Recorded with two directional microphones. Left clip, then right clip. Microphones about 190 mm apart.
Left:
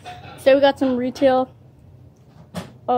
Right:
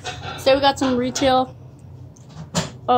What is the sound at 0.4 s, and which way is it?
A woman's voice, 25° left (ahead or behind).